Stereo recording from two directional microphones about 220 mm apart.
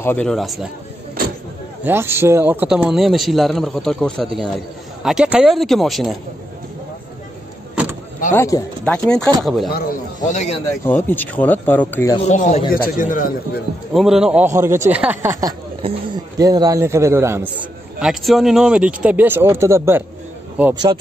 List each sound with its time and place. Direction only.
0.0 s a man's voice: 5° left (ahead or behind)
1.2 s vehicle: 40° right (ahead or behind)
1.9 s a man's voice: 10° right (ahead or behind)
8.4 s a man's voice: 15° left (ahead or behind)
9.8 s a man's voice: 30° left (ahead or behind)
10.8 s speech: 10° left (ahead or behind)
12.2 s a man's voice: 30° left (ahead or behind)
13.9 s a man's voice: centre (ahead or behind)
15.8 s a man's voice: 20° right (ahead or behind)